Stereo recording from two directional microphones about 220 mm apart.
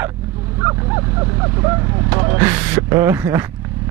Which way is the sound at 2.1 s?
15° right (ahead or behind).